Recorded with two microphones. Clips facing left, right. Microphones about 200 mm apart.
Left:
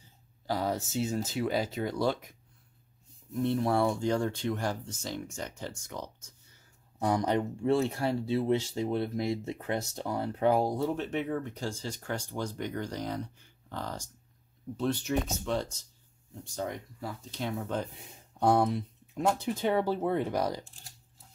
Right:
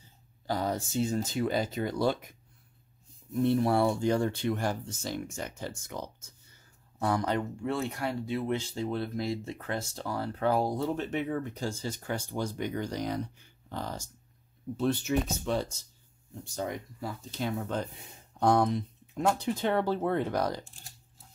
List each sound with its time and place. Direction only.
0.5 s speech: 5° left (ahead or behind)
3.4 s speech: 5° right (ahead or behind)
7.0 s speech: 15° left (ahead or behind)